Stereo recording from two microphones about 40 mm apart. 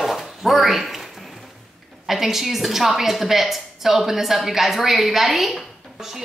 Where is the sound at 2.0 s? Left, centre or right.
Centre.